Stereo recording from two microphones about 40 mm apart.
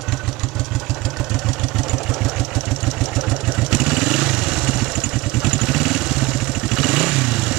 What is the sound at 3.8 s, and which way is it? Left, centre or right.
Vehicle, centre.